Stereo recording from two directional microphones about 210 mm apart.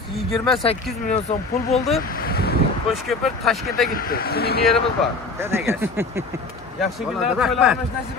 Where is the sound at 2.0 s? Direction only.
45° left (ahead or behind).